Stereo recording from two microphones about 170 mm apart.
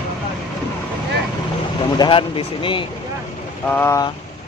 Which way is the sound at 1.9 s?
30° left (ahead or behind).